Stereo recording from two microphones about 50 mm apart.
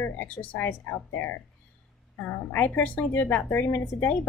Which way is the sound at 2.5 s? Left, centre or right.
Left.